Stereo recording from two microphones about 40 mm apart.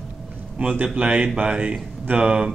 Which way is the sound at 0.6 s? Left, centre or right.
Right.